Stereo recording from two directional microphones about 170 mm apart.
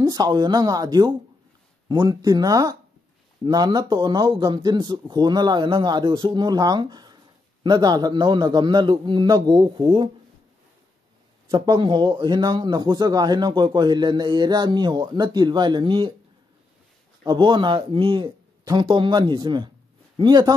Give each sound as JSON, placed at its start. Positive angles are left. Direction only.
{"t": 0.0, "sound": "speech", "side_deg": -20}
{"t": 11.5, "sound": "speech", "side_deg": -25}
{"t": 17.2, "sound": "speech", "side_deg": -25}